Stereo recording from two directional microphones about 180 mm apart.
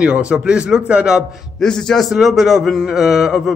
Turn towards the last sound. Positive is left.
turn(degrees=-5)  # may be behind; listen again after turning